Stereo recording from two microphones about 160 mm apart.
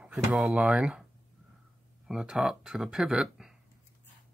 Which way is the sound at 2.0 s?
5° right (ahead or behind).